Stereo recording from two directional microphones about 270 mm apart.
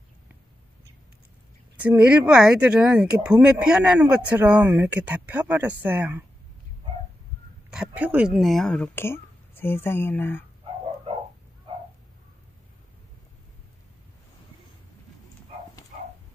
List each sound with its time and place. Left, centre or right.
1.8 s speech: centre
7.7 s speech: centre
15.9 s a sound: right